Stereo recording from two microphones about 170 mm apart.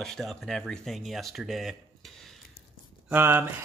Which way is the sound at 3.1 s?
10° right (ahead or behind).